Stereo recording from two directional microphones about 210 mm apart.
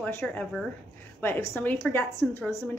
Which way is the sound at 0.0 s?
10° left (ahead or behind).